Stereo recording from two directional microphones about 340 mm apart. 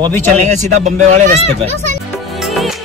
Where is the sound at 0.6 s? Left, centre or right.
Centre.